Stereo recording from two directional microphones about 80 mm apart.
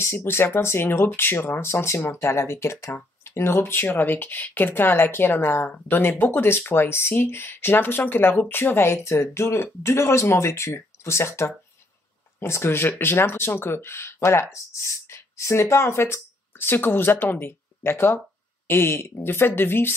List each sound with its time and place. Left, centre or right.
0.0 s speech: left